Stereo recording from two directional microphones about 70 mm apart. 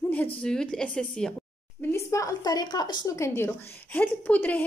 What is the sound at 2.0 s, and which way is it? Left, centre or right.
Speech, left.